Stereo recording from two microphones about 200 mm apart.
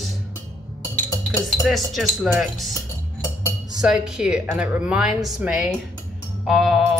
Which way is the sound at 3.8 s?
5° right (ahead or behind).